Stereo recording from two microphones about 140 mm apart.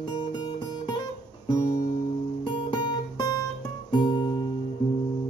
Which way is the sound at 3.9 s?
30° left (ahead or behind).